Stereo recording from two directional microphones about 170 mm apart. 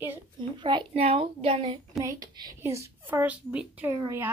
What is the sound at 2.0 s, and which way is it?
A woman's voice, 25° right (ahead or behind).